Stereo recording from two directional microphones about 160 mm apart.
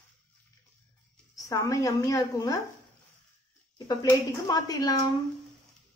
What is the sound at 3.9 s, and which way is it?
A woman's voice, 25° left (ahead or behind).